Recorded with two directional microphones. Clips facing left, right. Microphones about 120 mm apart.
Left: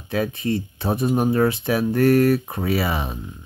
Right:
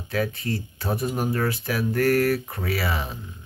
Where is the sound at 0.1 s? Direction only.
25° left (ahead or behind).